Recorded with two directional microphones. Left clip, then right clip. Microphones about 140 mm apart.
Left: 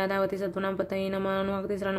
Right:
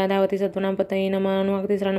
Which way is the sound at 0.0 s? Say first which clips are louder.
Right 7 dB; 30° right (ahead or behind).